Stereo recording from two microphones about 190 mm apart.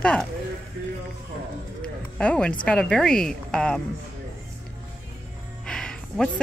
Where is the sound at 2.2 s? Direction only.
5° left (ahead or behind).